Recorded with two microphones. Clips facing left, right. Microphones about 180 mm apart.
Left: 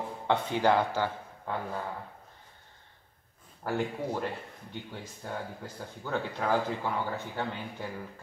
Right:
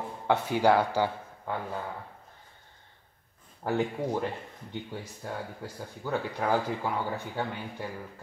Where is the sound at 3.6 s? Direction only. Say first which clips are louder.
Right 3 dB; 15° right (ahead or behind).